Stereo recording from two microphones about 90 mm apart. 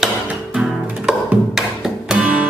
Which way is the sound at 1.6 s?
5° right (ahead or behind).